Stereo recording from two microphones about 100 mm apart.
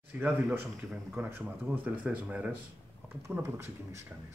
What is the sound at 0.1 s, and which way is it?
Speech, 15° right (ahead or behind).